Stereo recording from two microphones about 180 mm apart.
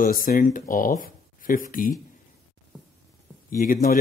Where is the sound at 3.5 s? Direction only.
50° left (ahead or behind).